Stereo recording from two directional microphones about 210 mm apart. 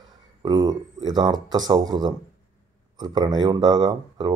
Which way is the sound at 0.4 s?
20° right (ahead or behind).